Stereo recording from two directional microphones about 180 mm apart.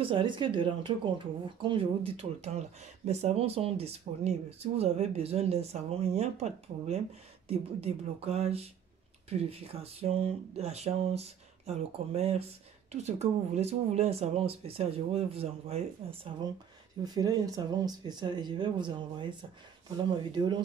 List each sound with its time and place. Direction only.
0.0 s speech: 30° right (ahead or behind)
17.0 s speech: 20° right (ahead or behind)